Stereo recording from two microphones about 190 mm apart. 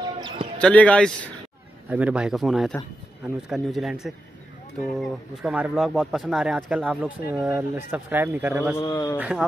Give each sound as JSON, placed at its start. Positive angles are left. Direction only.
{"t": 0.0, "sound": "basketball bounce", "side_deg": -20}
{"t": 0.6, "sound": "speech", "side_deg": 5}
{"t": 1.9, "sound": "speech", "side_deg": -5}
{"t": 8.7, "sound": "a man's voice", "side_deg": 20}